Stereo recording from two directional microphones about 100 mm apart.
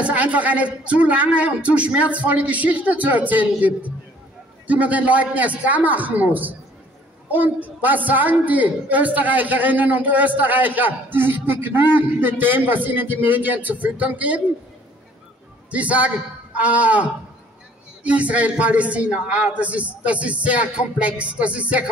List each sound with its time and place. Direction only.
0.0 s a man's voice: 15° right (ahead or behind)
15.7 s a man's voice: 15° right (ahead or behind)